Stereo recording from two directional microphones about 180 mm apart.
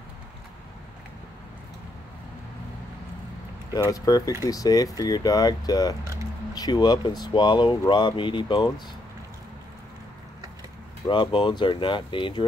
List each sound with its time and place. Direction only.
3.7 s speech: 20° left (ahead or behind)
11.1 s speech: 25° left (ahead or behind)